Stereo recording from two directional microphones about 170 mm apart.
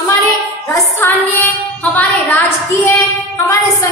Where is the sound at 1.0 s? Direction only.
10° left (ahead or behind).